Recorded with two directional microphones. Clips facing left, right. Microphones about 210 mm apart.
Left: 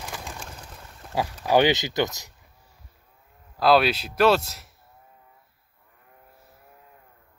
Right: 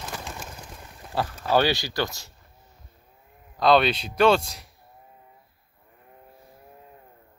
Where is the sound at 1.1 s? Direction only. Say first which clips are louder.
Left 2 dB; 10° left (ahead or behind).